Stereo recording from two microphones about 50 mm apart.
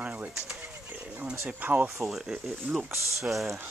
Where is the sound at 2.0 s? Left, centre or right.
Centre.